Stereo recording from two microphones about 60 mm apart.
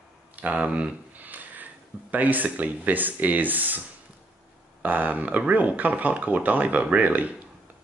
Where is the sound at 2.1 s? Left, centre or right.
Right.